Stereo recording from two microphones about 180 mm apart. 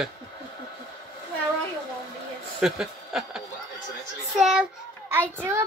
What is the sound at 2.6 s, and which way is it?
Snicker, 5° right (ahead or behind).